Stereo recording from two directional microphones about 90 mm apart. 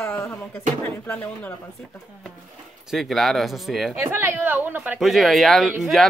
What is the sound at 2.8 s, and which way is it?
Speech, centre (ahead or behind).